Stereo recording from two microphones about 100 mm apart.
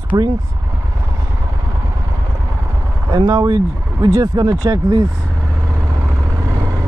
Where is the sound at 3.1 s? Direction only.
40° right (ahead or behind).